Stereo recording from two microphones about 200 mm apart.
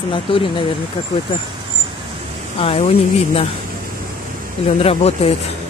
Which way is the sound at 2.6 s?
30° left (ahead or behind).